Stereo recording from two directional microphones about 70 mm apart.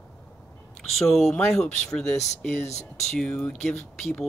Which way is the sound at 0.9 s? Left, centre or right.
Centre.